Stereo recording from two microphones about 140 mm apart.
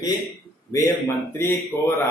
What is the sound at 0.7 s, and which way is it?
A man's voice, 25° left (ahead or behind).